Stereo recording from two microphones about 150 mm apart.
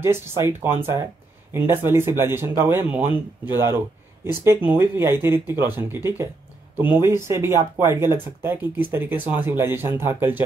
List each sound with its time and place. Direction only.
0.0 s speech: 15° right (ahead or behind)